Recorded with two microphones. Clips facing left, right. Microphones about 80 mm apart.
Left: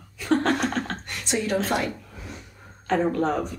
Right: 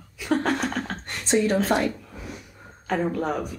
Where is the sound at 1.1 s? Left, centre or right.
Right.